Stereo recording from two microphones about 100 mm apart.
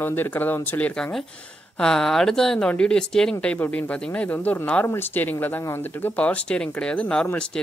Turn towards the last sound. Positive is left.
turn(degrees=15)  # may be behind; listen again after turning